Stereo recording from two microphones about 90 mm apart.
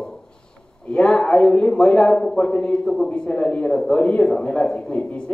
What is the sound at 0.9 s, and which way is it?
A man's voice, 10° left (ahead or behind).